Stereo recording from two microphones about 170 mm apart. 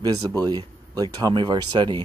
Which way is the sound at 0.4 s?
25° right (ahead or behind).